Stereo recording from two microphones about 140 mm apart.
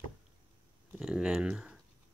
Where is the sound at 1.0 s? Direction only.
5° right (ahead or behind).